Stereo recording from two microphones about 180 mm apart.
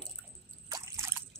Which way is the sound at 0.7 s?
20° right (ahead or behind).